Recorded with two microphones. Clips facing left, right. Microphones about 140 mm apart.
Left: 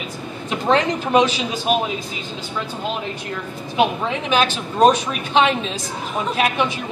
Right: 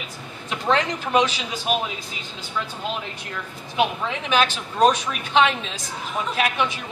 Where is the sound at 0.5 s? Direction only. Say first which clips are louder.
Left 4 dB; 25° left (ahead or behind).